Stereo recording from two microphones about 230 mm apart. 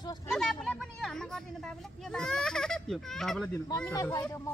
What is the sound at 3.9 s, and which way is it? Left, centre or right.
Speech, centre.